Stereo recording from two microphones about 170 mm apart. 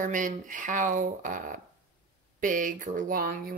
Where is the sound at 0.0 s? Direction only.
50° right (ahead or behind).